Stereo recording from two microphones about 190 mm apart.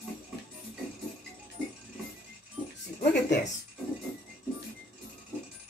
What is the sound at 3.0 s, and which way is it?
Speech, 65° left (ahead or behind).